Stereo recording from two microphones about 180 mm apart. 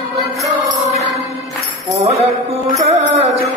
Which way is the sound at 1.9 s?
35° right (ahead or behind).